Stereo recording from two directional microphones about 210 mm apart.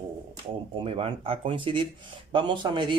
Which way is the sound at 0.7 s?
25° right (ahead or behind).